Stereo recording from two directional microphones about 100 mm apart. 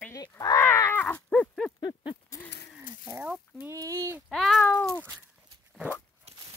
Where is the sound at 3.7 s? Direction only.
35° right (ahead or behind).